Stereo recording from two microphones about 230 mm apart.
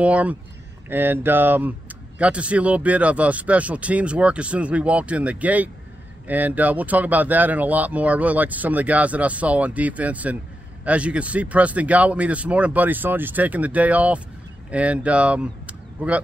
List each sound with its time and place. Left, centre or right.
0.0 s speech: centre